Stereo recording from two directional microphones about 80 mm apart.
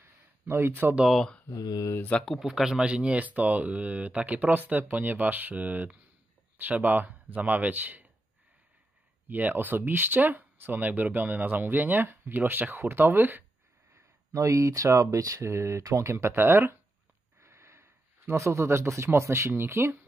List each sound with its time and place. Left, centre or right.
0.0 s a sound: right
0.9 s speech: centre
1.5 s speech: left
2.0 s speech: centre
2.2 s speech: centre; by 8.1 s right
9.3 s speech: right
13.9 s a sound: right
14.9 s speech: right